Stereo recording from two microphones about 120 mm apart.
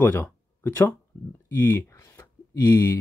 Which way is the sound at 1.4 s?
20° left (ahead or behind).